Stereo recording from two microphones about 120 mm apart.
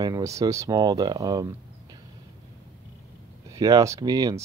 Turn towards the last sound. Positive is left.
turn(degrees=-30)  # may be behind; listen again after turning